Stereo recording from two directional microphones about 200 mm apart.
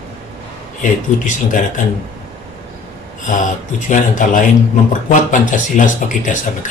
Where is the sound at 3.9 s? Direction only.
40° left (ahead or behind).